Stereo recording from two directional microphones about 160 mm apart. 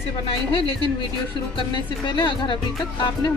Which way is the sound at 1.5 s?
30° left (ahead or behind).